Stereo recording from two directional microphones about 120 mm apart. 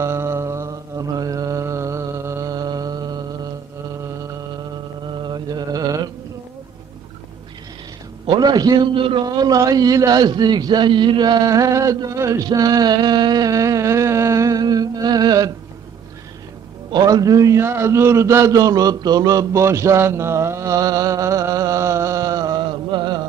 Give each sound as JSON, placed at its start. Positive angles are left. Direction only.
{"t": 0.0, "sound": "mantra", "side_deg": -20}
{"t": 5.1, "sound": "mantra", "side_deg": -40}
{"t": 8.3, "sound": "a man's voice", "side_deg": -35}
{"t": 16.9, "sound": "a sound", "side_deg": -30}